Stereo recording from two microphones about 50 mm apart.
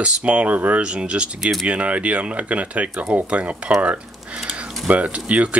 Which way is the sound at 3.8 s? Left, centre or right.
Right.